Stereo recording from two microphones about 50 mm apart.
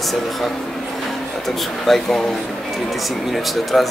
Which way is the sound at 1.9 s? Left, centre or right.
Centre.